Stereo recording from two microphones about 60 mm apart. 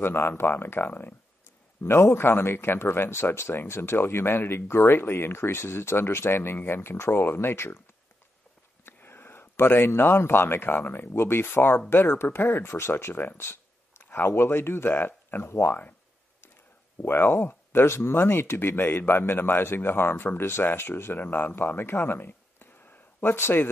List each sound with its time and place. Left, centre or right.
0.0 s speech: left
1.8 s speech: left
8.8 s speech: left
17.0 s speech: left